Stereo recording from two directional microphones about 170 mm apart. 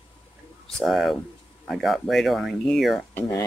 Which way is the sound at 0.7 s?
Centre (ahead or behind).